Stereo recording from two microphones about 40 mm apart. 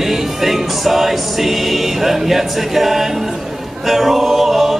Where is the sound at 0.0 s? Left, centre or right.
Centre.